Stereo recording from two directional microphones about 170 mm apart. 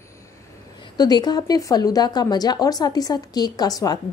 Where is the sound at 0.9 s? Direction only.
25° left (ahead or behind).